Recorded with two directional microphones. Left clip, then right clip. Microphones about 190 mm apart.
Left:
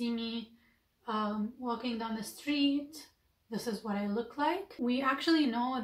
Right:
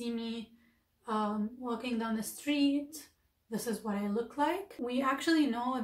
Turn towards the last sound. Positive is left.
turn(degrees=0)  # may be behind; listen again after turning